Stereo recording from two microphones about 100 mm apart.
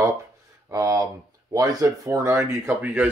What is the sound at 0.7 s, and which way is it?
Speech, 35° right (ahead or behind).